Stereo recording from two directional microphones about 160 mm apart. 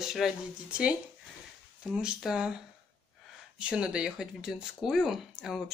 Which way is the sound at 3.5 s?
5° right (ahead or behind).